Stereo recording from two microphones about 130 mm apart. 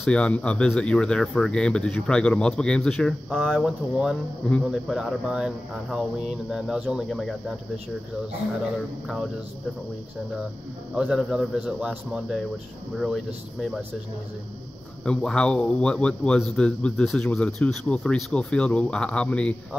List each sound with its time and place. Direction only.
0.0 s a man's voice: 10° left (ahead or behind)
11.0 s speech: 5° right (ahead or behind)
15.0 s a man's voice: 5° left (ahead or behind)